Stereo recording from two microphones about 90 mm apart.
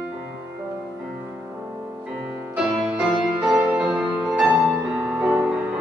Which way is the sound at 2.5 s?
5° right (ahead or behind).